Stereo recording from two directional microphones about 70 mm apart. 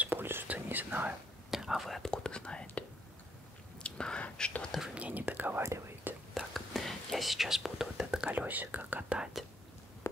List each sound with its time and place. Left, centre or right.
0.0 s whispering: right
1.5 s whispering: centre
3.8 s whispering: centre
4.9 s whispering: right
5.6 s whispering: right
6.3 s whispering: centre
8.3 s whispering: right
9.2 s whispering: centre